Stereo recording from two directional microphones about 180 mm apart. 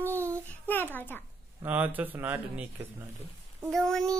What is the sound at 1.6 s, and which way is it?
Speech, 10° right (ahead or behind).